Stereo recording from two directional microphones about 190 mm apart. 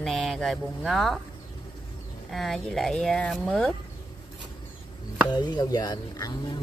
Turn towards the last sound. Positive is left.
turn(degrees=20)  # may be behind; listen again after turning